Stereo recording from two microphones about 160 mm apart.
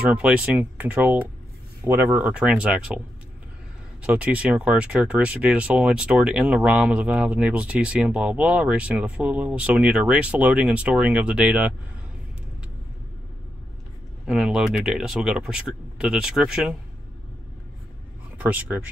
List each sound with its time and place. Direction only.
0.1 s speech: 5° right (ahead or behind)
4.0 s speech: 10° right (ahead or behind)
14.2 s speech: 5° right (ahead or behind)
18.4 s speech: 10° right (ahead or behind)